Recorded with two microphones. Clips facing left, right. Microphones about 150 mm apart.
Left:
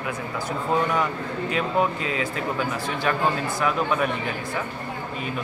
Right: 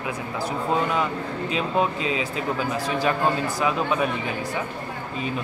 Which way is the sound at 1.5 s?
20° right (ahead or behind).